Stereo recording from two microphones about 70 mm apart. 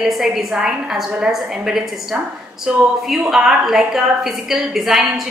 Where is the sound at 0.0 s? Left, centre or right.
Centre.